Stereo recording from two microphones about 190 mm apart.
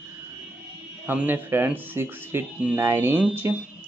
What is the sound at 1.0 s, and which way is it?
Speech, 10° right (ahead or behind).